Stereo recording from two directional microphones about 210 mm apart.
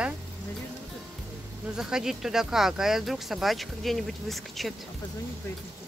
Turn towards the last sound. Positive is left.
turn(degrees=0)  # may be behind; listen again after turning